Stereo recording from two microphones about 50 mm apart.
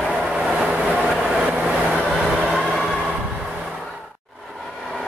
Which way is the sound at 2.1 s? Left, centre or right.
Centre.